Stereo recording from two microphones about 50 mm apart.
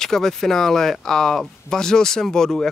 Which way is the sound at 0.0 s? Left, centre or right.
Centre.